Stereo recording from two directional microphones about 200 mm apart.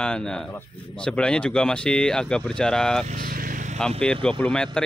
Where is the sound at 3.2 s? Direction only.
45° right (ahead or behind).